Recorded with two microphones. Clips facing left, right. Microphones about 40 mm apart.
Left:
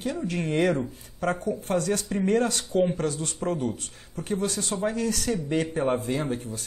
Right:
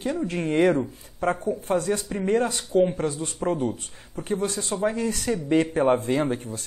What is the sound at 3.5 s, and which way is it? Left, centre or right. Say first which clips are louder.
Speech: right 3 dB; right.